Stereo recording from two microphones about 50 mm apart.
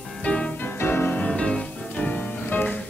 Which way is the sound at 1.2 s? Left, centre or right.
Centre.